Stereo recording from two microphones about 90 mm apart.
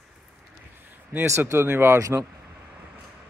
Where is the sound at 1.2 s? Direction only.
30° right (ahead or behind).